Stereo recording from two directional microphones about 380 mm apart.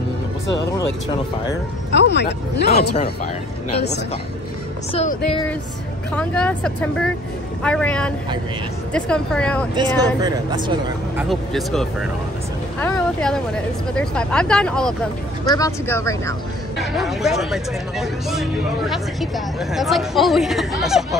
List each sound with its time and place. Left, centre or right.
1.9 s speech: left
4.9 s speech: centre
6.1 s a woman's voice: centre
9.8 s speech: centre
11.1 s a woman's voice: centre
12.8 s a sound: centre
13.9 s a woman's voice: centre